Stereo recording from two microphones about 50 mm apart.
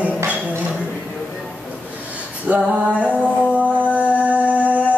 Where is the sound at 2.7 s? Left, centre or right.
Right.